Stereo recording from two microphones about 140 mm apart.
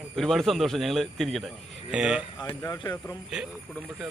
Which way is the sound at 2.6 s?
20° left (ahead or behind).